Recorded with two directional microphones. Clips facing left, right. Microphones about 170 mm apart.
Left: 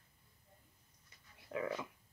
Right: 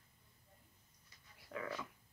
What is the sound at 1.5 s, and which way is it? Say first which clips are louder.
Dog: left 5 dB; 20° left (ahead or behind).